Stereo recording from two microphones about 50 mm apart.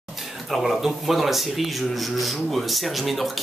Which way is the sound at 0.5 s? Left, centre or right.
Centre.